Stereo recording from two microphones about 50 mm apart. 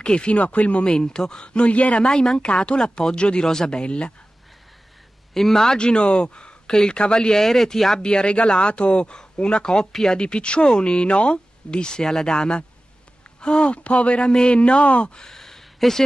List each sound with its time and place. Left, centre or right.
0.0 s a man's voice: left
0.9 s a man's voice: centre
2.0 s a man's voice: centre
5.3 s speech: centre
8.0 s speech: centre
10.2 s a man's voice: centre
15.2 s a sound: centre